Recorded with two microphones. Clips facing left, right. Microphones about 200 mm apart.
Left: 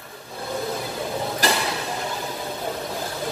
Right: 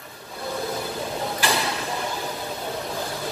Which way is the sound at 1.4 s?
40° left (ahead or behind).